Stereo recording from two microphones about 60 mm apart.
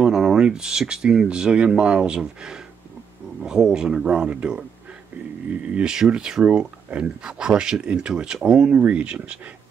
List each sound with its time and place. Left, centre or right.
0.0 s speech: centre